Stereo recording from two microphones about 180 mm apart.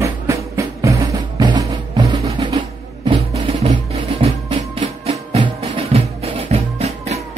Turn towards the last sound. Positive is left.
turn(degrees=-35)  # may be behind; listen again after turning